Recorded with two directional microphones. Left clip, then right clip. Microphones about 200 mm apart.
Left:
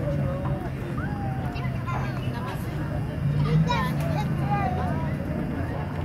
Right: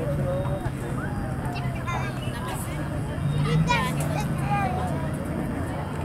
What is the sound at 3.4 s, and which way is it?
Vehicle, 30° left (ahead or behind).